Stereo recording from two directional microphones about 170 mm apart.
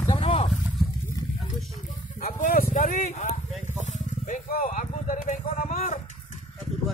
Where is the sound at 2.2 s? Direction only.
50° left (ahead or behind).